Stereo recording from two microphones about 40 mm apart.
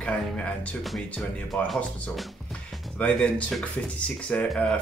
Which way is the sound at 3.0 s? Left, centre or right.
Left.